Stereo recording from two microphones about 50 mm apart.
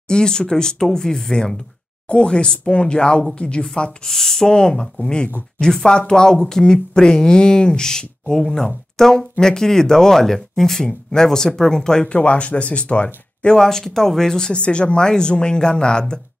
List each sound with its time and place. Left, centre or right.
0.1 s a woman's voice: centre
13.6 s speech: centre